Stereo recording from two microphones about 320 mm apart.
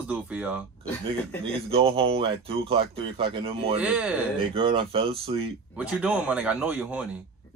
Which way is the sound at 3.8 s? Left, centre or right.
Centre.